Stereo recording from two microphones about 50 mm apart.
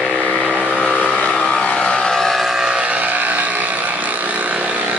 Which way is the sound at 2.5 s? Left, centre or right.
Centre.